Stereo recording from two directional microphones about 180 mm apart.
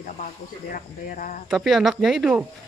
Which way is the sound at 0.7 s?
45° left (ahead or behind).